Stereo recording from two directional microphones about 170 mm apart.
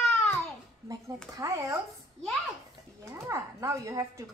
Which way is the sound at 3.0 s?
15° right (ahead or behind).